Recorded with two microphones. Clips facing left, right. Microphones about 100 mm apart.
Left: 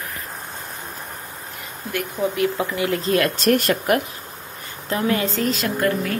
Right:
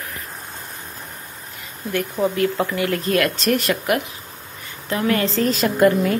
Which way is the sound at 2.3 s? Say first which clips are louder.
Right 1 dB; 10° left (ahead or behind).